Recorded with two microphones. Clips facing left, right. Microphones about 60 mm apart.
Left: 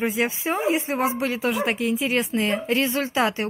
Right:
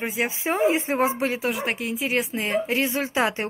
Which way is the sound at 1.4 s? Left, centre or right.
Centre.